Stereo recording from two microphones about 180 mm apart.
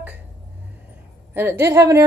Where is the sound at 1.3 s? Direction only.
10° right (ahead or behind).